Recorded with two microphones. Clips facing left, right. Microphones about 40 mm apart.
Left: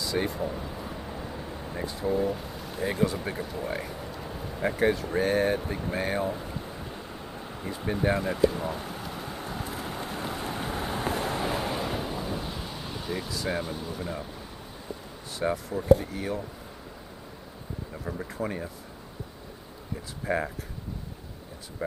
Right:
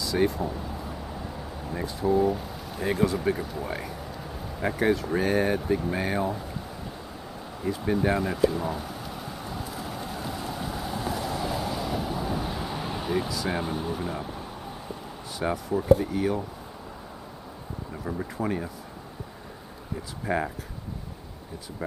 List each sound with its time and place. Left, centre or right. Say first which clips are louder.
0.0 s a sound: right 4 dB; centre
1.7 s speech: right 4 dB; centre
7.6 s speech: right 3 dB; centre
9.8 s vehicle: even; centre
12.2 s vehicle: right 3 dB; centre
13.5 s speech: right 2 dB; right
14.0 s speech: right 3 dB; centre
15.3 s speech: right 2 dB; centre
17.9 s speech: right 3 dB; centre
20.2 s speech: right 1 dB; centre